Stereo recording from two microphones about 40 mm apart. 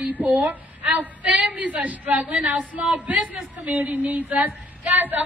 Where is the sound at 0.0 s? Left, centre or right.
Right.